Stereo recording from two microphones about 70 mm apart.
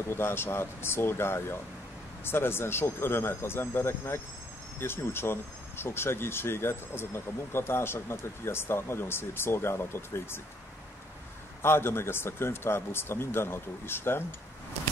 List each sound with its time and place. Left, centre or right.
0.1 s speech: left
11.6 s speech: left